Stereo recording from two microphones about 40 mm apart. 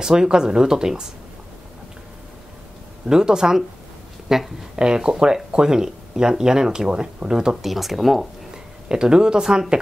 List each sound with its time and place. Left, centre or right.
0.0 s speech: centre
3.1 s speech: centre
7.6 s speech: centre
8.8 s speech: centre